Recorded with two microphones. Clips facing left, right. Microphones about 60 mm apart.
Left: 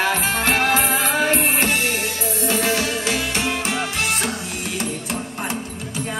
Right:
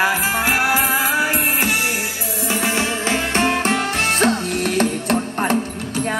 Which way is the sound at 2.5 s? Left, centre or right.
Right.